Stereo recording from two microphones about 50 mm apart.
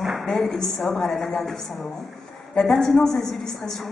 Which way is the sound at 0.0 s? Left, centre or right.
Centre.